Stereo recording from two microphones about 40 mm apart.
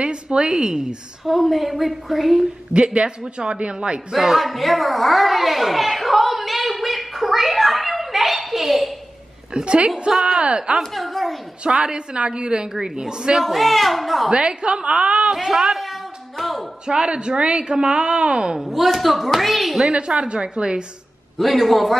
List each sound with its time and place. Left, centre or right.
0.0 s a woman's voice: right
1.2 s a woman's voice: centre
2.7 s a woman's voice: right
4.1 s a child's voice: centre
9.5 s a woman's voice: right
10.8 s a woman's voice: centre
11.6 s a woman's voice: right
13.4 s a woman's voice: centre
14.3 s a woman's voice: right
15.3 s a sound: centre
16.8 s a woman's voice: right
18.6 s a woman's voice: centre
19.9 s a woman's voice: right
21.4 s a woman's voice: centre